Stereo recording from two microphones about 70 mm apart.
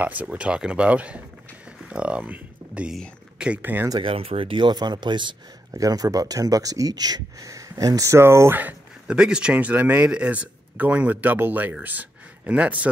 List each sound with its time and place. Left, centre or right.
0.0 s speech: right
3.6 s speech: right
4.6 s speech: right
5.7 s speech: right
8.2 s speech: right
9.0 s speech: centre